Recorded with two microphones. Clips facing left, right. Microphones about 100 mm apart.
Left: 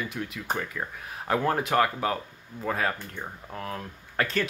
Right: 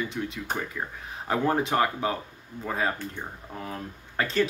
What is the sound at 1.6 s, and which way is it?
Speech, 5° right (ahead or behind).